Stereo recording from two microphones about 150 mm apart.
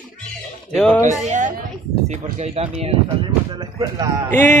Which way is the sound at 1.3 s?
55° right (ahead or behind).